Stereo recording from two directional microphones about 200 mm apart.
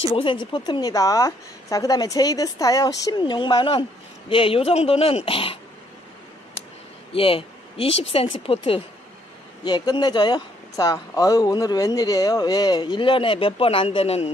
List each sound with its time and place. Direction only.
0.0 s speech: 30° left (ahead or behind)
7.2 s a man's voice: 25° left (ahead or behind)